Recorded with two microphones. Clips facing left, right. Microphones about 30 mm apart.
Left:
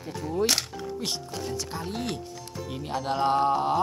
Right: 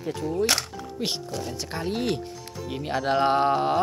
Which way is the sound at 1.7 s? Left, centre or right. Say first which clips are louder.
Right 5 dB; right.